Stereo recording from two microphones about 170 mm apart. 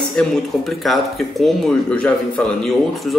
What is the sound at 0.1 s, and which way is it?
A man's voice, centre (ahead or behind).